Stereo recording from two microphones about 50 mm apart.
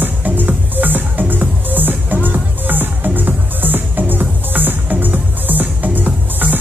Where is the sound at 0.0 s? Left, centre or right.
Right.